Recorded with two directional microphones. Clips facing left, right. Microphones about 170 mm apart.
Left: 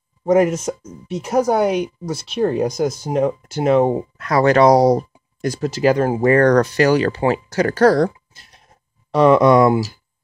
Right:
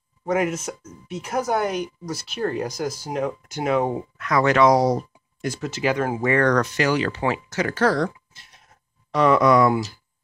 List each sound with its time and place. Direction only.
0.2 s speech: 35° left (ahead or behind)